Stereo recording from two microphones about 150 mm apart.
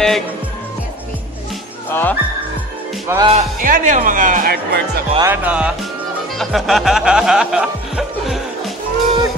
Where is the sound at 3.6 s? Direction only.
60° right (ahead or behind); by 5.0 s 90° right.